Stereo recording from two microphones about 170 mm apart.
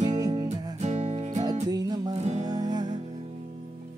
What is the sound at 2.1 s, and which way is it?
Music, 40° right (ahead or behind).